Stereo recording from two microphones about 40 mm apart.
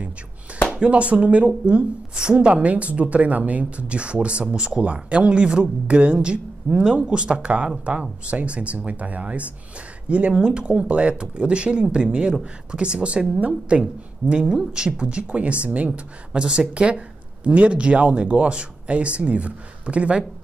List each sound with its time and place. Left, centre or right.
0.7 s a woman's voice: right
2.4 s speech: right
16.3 s speech: right